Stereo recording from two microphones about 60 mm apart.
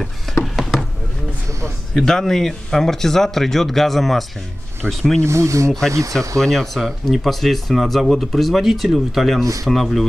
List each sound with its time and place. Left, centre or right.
0.3 s a sound: centre
2.0 s speech: centre
5.2 s speech: right
5.7 s speech: centre